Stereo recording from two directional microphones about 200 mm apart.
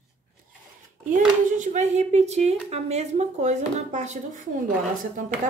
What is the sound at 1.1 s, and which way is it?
A woman's voice, 40° right (ahead or behind).